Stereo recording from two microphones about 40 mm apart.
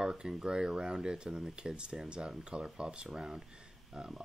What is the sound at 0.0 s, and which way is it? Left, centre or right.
Speech, centre.